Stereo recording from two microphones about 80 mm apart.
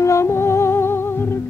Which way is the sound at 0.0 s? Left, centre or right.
Left.